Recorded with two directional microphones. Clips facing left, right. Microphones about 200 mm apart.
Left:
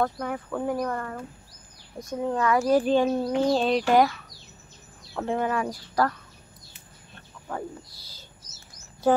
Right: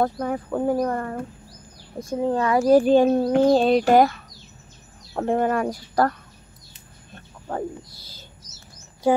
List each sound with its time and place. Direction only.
0.0 s speech: 35° right (ahead or behind)
2.8 s speech: 45° right (ahead or behind)